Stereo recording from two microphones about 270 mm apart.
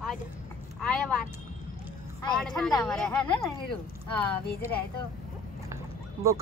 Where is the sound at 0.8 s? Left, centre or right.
Centre.